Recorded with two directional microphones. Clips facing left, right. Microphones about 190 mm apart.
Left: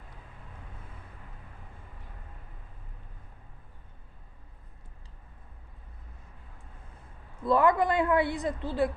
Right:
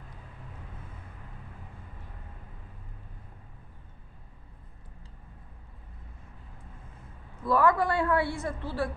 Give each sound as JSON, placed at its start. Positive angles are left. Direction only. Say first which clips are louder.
{"t": 7.4, "sound": "a woman's voice", "louder": "left 1 dB", "side_deg": 20}